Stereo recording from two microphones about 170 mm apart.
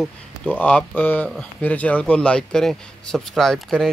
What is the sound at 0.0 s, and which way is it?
Speech, 5° left (ahead or behind).